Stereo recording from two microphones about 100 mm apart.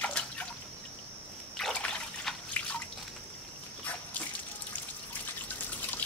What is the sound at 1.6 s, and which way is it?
Trickle, 5° left (ahead or behind).